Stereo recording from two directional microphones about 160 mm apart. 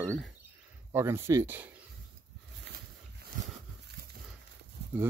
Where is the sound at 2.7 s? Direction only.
90° right.